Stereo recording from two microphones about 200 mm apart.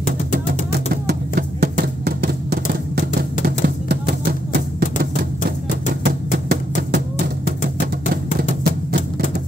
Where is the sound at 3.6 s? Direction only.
50° right (ahead or behind).